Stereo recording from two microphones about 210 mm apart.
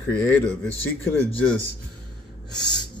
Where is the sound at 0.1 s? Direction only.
10° left (ahead or behind).